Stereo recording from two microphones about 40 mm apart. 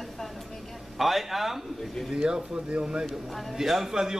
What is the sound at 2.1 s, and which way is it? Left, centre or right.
Speech, centre.